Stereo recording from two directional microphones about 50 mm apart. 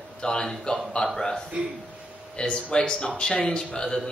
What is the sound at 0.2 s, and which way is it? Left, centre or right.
A man's voice, centre.